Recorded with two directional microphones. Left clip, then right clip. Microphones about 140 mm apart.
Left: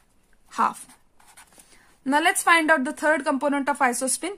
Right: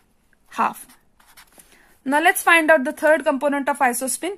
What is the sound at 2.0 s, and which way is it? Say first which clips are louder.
Speech: right 3 dB; 35° right (ahead or behind).